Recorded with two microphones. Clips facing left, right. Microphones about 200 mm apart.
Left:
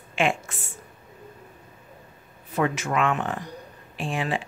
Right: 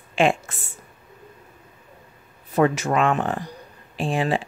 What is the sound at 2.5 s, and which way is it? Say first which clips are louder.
Speech: right 5 dB; 40° right (ahead or behind).